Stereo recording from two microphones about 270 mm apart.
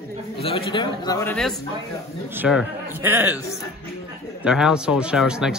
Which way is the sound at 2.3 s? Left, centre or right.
Centre.